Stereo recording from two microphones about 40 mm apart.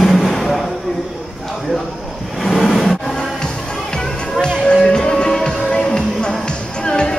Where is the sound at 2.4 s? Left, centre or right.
Centre.